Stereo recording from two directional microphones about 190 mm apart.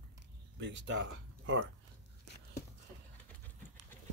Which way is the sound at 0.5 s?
65° right (ahead or behind).